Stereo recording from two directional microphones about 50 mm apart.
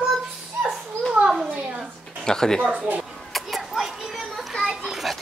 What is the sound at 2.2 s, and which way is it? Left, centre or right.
Speech, centre.